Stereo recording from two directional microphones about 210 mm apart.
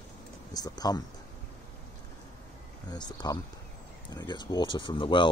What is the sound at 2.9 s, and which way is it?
Speech, 20° left (ahead or behind).